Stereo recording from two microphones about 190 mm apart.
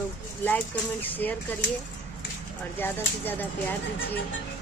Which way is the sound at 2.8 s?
10° left (ahead or behind).